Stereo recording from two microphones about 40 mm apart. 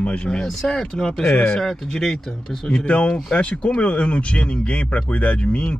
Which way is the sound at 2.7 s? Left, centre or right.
Left.